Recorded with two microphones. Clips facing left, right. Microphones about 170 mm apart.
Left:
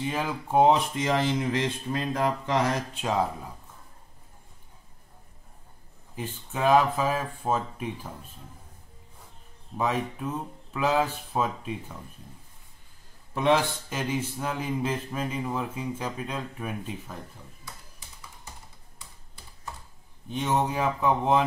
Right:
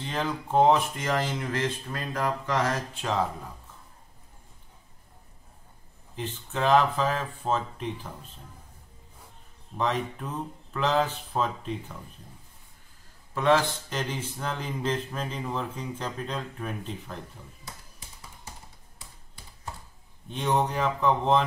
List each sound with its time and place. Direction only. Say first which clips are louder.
0.0 s speech: left 1 dB; 10° left (ahead or behind)
6.1 s speech: right 1 dB; 10° left (ahead or behind)
9.8 s speech: left 1 dB; 10° left (ahead or behind)
13.3 s speech: even; 15° left (ahead or behind)
20.2 s speech: even; 5° left (ahead or behind)